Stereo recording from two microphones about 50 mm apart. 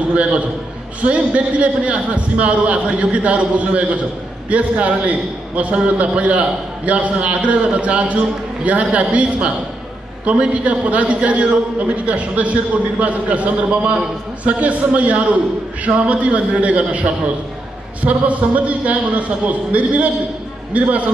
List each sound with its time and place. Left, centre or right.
0.1 s a man's voice: right